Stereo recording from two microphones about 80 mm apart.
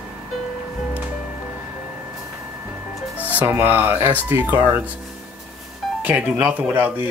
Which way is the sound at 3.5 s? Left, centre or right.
Right.